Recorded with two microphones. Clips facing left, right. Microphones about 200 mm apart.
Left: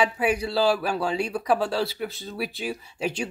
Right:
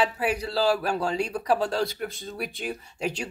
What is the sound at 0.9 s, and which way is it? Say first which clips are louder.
Speech: left 1 dB; 5° left (ahead or behind).